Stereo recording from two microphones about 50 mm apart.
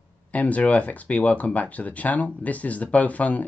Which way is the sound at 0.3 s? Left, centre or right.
Left.